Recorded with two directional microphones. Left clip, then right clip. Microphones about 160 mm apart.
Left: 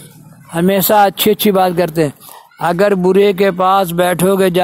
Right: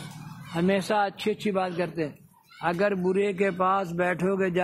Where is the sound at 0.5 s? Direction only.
55° left (ahead or behind).